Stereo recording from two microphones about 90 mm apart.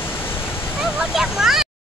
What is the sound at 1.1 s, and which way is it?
Speech, 5° right (ahead or behind).